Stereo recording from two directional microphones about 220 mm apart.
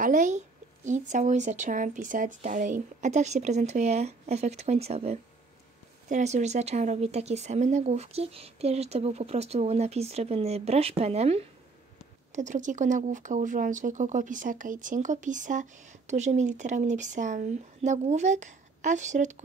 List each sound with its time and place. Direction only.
0.0 s speech: 35° right (ahead or behind)